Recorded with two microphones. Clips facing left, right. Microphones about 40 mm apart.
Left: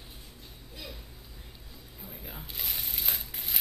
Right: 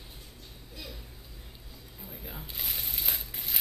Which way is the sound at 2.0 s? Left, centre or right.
Centre.